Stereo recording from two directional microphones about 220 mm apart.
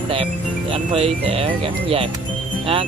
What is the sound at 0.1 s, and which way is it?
Speech, 25° right (ahead or behind).